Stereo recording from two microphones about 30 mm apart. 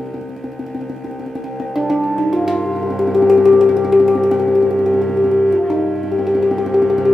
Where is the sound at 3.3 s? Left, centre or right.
Centre.